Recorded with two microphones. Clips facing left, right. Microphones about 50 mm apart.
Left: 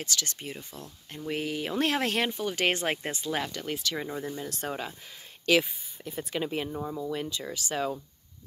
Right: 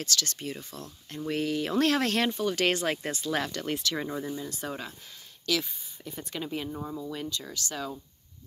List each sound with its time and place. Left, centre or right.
0.0 s speech: centre
2.8 s speech: left
3.3 s speech: centre
6.4 s speech: left
6.7 s speech: centre
7.0 s speech: centre